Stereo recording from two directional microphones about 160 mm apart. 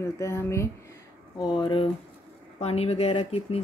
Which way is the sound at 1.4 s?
30° left (ahead or behind).